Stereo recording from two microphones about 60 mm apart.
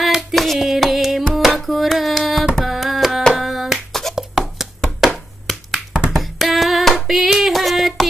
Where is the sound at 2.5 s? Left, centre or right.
Centre.